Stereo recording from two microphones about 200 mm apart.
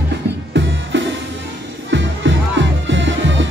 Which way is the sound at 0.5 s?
65° right (ahead or behind).